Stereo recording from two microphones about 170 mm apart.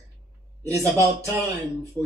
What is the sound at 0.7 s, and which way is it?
Speech, 20° right (ahead or behind).